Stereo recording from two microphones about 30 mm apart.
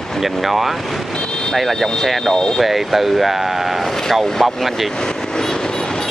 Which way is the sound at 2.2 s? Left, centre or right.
Left.